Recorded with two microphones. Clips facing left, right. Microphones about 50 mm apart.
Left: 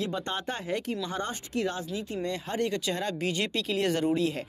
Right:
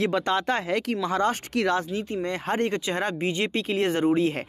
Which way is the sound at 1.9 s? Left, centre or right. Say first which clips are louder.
Right 4 dB; right.